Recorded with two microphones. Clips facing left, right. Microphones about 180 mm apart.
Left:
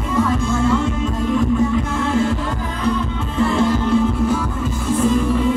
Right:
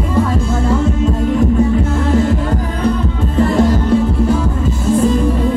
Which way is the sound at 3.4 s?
40° right (ahead or behind).